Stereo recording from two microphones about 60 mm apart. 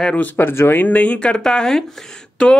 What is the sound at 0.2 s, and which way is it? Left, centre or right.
Speech, left.